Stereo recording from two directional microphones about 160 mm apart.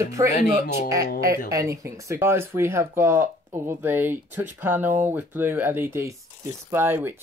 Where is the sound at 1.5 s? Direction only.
20° right (ahead or behind).